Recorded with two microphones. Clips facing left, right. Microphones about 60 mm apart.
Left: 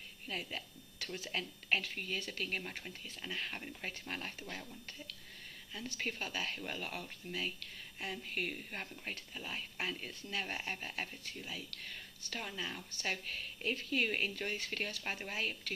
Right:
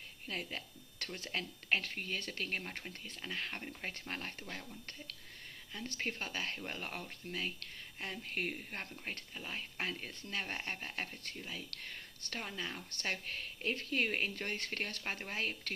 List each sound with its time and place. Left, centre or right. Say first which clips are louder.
0.3 s speech: even; right
5.9 s speech: even; right